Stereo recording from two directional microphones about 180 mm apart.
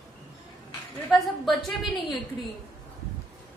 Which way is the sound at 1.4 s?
Centre (ahead or behind).